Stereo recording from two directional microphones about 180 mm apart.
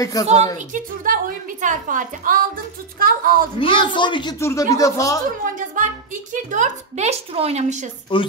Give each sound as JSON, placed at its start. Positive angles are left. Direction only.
{"t": 0.0, "sound": "a woman's voice", "side_deg": 20}
{"t": 0.7, "sound": "a woman's voice", "side_deg": -50}
{"t": 3.5, "sound": "a woman's voice", "side_deg": 30}
{"t": 5.4, "sound": "a woman's voice", "side_deg": -50}